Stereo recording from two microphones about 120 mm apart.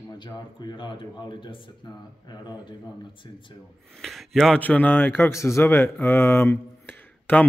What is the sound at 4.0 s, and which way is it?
A man's voice, centre (ahead or behind).